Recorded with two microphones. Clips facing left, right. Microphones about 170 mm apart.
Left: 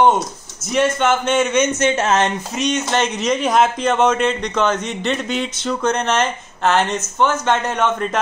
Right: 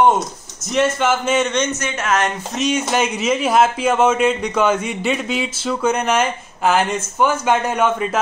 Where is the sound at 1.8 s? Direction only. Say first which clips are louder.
Left 4 dB; 25° left (ahead or behind).